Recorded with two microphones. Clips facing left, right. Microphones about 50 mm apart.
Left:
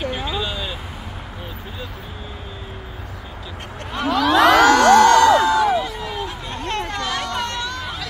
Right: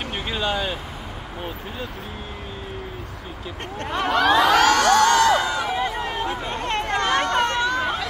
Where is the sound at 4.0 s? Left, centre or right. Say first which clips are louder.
Even; right.